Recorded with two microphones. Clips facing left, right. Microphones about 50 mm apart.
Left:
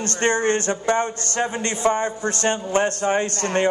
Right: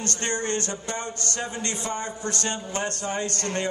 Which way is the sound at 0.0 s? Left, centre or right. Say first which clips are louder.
Left 8 dB; left.